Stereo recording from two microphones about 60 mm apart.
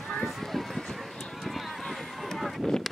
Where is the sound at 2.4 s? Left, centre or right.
Centre.